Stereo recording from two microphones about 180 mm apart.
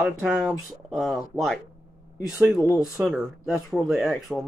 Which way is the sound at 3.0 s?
5° right (ahead or behind).